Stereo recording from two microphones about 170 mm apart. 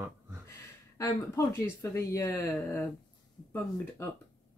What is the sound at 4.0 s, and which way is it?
Speech, 15° left (ahead or behind).